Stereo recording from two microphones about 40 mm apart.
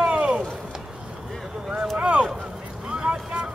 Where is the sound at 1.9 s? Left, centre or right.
Right.